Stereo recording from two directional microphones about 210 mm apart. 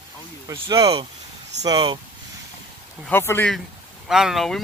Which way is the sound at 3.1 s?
10° left (ahead or behind).